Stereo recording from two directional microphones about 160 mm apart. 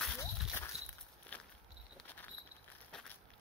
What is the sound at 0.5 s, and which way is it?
Walk, 20° left (ahead or behind).